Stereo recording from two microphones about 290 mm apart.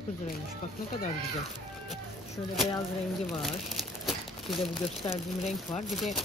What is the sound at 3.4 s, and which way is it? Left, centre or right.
Crumpling, centre.